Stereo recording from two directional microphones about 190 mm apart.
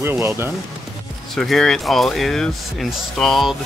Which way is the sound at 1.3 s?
Centre (ahead or behind).